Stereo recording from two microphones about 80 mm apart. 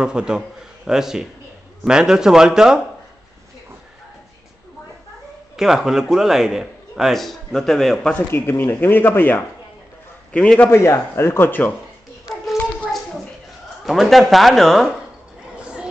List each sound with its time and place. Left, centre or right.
0.0 s a man's voice: centre
5.6 s a man's voice: centre
8.3 s a man's voice: left
10.7 s speech: left
13.8 s a man's voice: centre
15.5 s a sound: centre